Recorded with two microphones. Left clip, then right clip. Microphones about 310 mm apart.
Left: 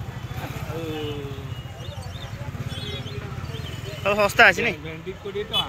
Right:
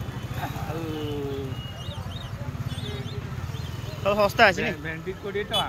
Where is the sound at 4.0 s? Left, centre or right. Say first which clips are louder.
Left 3 dB; centre.